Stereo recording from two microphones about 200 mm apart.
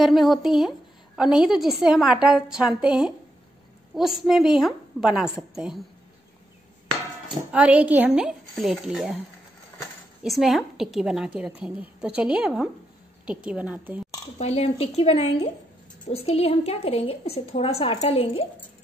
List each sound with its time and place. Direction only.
0.0 s a woman's voice: centre (ahead or behind)
7.5 s a woman's voice: 5° right (ahead or behind)
10.2 s a woman's voice: centre (ahead or behind)
14.4 s a woman's voice: 30° left (ahead or behind)